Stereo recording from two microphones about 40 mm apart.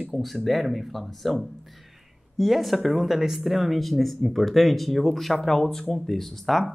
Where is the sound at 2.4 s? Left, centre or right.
Centre.